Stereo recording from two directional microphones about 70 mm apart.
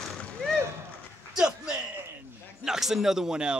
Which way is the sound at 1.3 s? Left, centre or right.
Centre.